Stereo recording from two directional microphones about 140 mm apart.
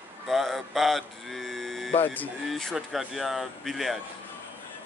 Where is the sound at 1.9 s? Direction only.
10° left (ahead or behind).